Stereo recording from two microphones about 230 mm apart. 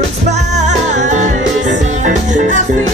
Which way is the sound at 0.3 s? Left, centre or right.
Right.